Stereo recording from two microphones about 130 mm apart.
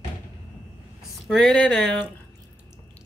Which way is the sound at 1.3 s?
5° left (ahead or behind).